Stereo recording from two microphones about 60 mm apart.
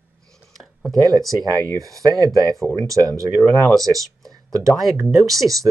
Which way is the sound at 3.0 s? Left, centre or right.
Right.